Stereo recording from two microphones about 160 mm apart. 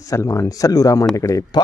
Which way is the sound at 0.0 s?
20° left (ahead or behind).